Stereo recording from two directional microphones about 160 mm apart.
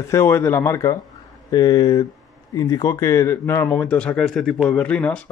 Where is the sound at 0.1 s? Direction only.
15° left (ahead or behind).